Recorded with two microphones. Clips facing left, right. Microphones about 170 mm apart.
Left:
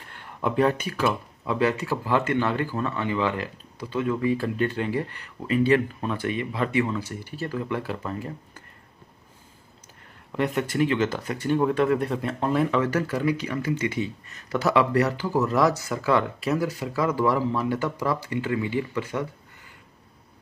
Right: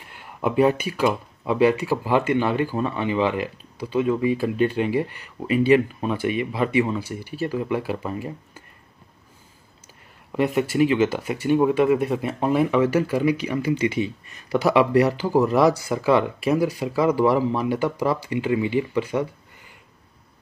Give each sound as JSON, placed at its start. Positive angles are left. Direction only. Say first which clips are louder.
{"t": 0.0, "sound": "speech", "louder": "right 3 dB", "side_deg": -10}
{"t": 10.3, "sound": "speech", "louder": "right 4 dB", "side_deg": -10}